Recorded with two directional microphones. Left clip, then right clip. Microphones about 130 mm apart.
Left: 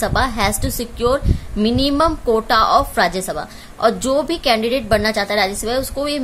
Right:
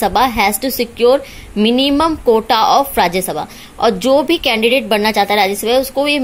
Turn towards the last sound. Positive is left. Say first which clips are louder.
# right 7 dB
turn(degrees=-20)  # may be behind; listen again after turning